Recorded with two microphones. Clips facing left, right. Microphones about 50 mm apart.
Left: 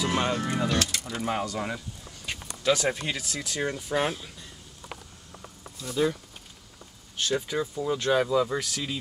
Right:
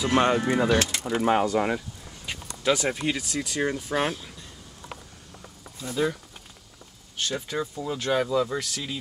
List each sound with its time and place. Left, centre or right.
0.0 s speech: centre
0.5 s speech: right
2.2 s speech: centre
7.2 s speech: centre